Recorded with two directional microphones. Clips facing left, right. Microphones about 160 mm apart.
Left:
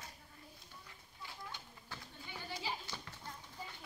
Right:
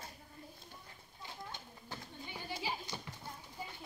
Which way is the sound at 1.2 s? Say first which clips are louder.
Right 2 dB; 20° right (ahead or behind).